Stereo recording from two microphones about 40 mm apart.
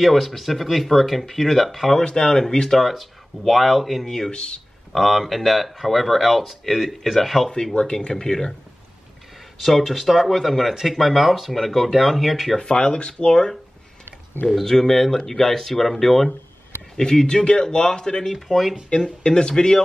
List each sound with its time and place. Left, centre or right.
0.0 s speech: centre
2.0 s speech: centre
2.8 s speech: centre
4.3 s speech: left
4.9 s speech: centre
7.7 s speech: left
8.1 s speech: centre
9.6 s speech: centre
12.5 s speech: left
13.3 s speech: centre
14.6 s speech: centre
18.3 s speech: centre
18.9 s speech: left